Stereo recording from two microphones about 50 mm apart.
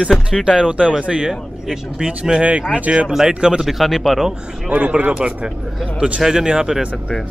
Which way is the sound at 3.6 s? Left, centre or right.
Centre.